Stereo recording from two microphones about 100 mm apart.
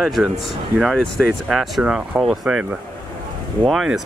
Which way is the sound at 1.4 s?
Centre (ahead or behind).